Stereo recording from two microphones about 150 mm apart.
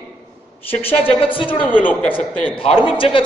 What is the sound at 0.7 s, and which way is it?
Speech, 40° left (ahead or behind).